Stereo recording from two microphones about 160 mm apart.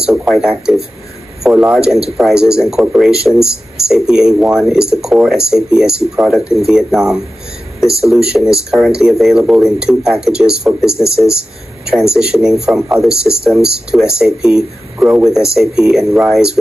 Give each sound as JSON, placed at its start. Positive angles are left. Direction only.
{"t": 0.0, "sound": "speech", "side_deg": -5}